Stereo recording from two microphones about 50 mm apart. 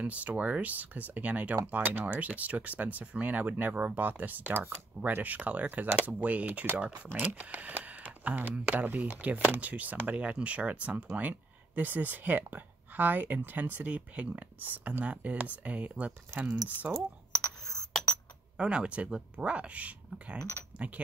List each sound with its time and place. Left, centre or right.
0.0 s speech: right
17.9 s a sound: centre
18.6 s speech: right